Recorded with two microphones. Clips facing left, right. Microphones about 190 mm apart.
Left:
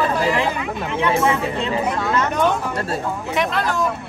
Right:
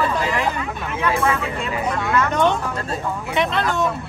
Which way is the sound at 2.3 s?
5° left (ahead or behind).